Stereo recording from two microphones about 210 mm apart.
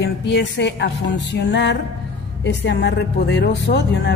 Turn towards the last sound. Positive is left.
turn(degrees=50)  # may be behind; listen again after turning